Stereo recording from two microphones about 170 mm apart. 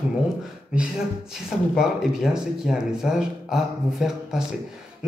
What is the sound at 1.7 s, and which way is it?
Speech, 5° right (ahead or behind).